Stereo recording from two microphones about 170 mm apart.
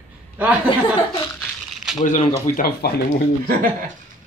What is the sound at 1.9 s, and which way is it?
Speech, 45° left (ahead or behind).